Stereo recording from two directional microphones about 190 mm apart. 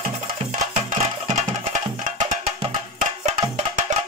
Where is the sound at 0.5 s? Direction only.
40° right (ahead or behind).